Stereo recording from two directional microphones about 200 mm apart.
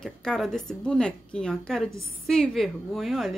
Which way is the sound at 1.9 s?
90° left.